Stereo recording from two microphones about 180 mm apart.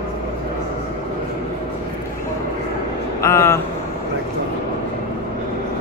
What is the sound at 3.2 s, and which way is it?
Speech, 15° left (ahead or behind).